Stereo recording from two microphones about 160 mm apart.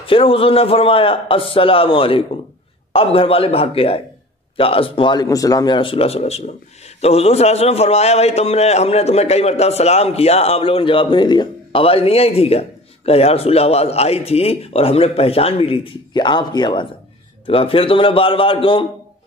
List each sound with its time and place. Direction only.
0.0 s a man's voice: 35° left (ahead or behind)